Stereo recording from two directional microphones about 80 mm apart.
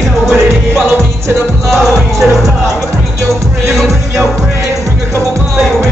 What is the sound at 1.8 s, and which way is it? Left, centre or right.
Music, centre.